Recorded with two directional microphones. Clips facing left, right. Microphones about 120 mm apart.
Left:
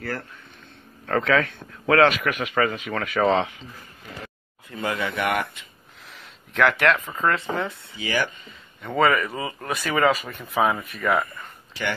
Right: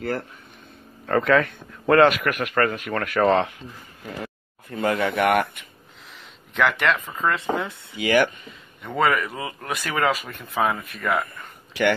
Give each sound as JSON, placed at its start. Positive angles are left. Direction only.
{"t": 0.0, "sound": "speech", "side_deg": -25}
{"t": 1.0, "sound": "speech", "side_deg": 0}
{"t": 4.2, "sound": "speech", "side_deg": -55}
{"t": 6.1, "sound": "speech", "side_deg": 0}
{"t": 8.0, "sound": "speech", "side_deg": -55}
{"t": 8.8, "sound": "speech", "side_deg": 0}